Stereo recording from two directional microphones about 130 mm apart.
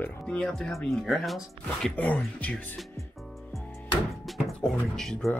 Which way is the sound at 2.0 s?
10° left (ahead or behind).